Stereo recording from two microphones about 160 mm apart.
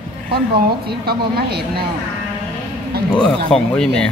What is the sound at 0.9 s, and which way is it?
Speech, 85° right.